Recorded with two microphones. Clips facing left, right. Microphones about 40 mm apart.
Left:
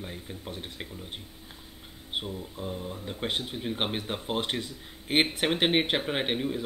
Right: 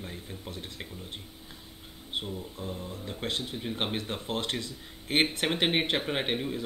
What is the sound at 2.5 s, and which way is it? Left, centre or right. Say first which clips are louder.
Speech: left 2 dB; centre.